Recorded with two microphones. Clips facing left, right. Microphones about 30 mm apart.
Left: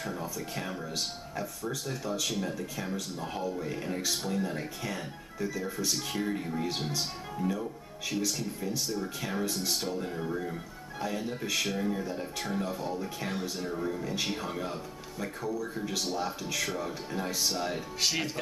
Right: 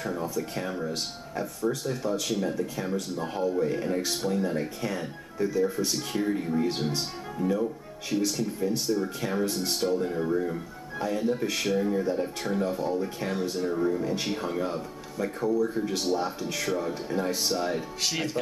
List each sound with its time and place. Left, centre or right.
0.0 s speech: centre
15.4 s speech: centre
16.0 s speech: centre